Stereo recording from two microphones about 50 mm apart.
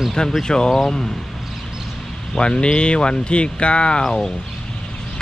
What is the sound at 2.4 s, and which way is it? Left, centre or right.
Speech, centre.